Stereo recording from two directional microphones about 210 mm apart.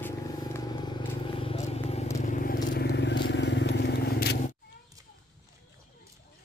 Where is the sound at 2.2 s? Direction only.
40° left (ahead or behind).